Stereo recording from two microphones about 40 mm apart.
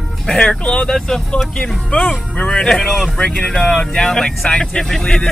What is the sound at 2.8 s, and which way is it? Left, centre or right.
Speech, centre.